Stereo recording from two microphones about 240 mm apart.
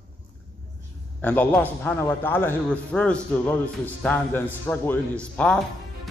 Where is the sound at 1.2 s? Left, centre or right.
Centre.